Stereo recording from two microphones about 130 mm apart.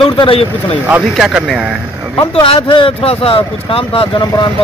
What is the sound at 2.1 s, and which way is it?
Speech, 40° left (ahead or behind).